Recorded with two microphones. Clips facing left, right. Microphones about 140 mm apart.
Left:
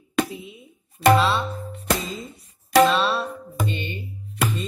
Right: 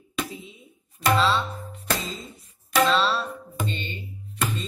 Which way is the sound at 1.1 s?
15° left (ahead or behind).